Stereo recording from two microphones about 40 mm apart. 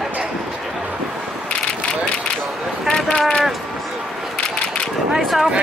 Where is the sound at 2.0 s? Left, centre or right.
Left.